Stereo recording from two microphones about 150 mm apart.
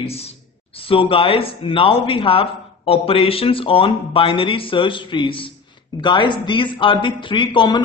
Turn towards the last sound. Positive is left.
turn(degrees=30)  # may be behind; listen again after turning